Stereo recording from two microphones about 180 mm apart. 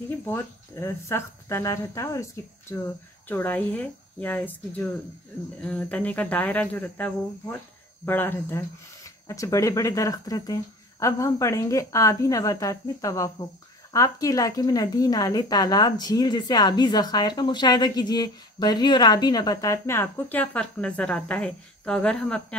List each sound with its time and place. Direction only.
0.2 s a woman's voice: 15° left (ahead or behind)